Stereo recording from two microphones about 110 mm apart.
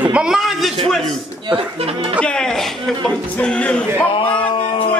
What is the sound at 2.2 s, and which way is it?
Music, 5° left (ahead or behind).